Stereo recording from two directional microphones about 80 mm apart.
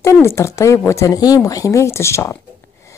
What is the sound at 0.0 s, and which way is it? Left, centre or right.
Speech, left.